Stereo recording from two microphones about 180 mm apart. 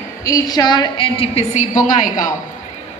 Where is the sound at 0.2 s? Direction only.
20° left (ahead or behind); by 2.3 s 45° left (ahead or behind).